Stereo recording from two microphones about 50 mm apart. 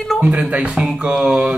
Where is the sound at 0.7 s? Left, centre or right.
Centre.